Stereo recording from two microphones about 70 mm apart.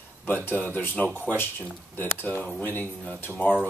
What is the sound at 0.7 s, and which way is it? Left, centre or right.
Speech, left.